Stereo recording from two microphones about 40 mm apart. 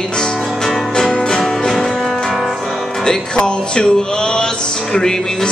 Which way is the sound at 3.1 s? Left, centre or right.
Left.